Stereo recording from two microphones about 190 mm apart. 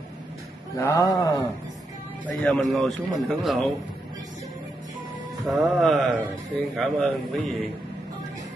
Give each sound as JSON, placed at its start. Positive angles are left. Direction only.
{"t": 0.7, "sound": "speech", "side_deg": 15}
{"t": 2.4, "sound": "a man's voice", "side_deg": 0}
{"t": 5.4, "sound": "a man's voice", "side_deg": 0}